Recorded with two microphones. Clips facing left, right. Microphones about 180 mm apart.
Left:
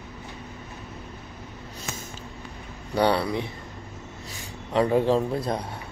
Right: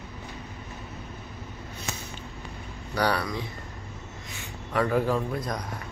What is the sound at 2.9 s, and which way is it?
Speech, 25° left (ahead or behind).